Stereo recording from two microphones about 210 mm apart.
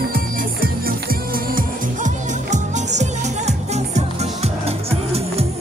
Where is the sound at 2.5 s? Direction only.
35° right (ahead or behind).